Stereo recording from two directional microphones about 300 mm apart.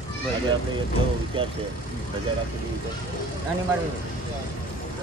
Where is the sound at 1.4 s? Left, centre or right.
Centre.